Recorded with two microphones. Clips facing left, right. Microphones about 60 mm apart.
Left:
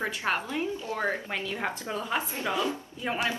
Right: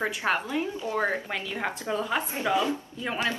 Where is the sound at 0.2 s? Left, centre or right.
Centre.